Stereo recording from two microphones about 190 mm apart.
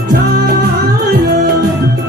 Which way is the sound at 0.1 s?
55° right (ahead or behind).